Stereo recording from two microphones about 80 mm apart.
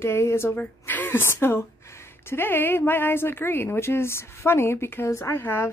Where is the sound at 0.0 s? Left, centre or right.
Left.